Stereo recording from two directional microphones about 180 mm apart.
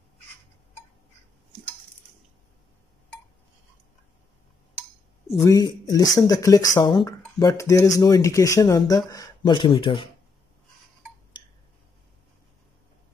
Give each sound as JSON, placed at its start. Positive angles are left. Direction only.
{"t": 5.4, "sound": "speech", "side_deg": 20}